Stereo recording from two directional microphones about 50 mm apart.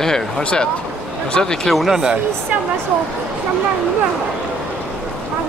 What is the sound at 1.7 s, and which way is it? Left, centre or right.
Speech, centre.